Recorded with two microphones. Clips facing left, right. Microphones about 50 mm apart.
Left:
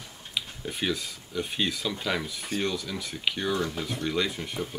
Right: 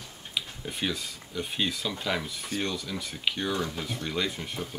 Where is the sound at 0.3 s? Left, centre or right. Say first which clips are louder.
Left 1 dB; centre.